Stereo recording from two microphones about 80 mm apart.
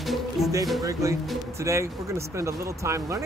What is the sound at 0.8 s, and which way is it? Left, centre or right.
Speech, right.